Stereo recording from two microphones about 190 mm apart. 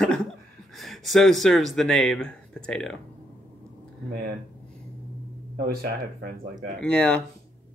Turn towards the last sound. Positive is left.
turn(degrees=5)  # may be behind; listen again after turning